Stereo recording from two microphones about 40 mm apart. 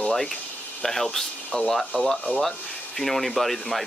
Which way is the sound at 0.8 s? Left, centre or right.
Centre.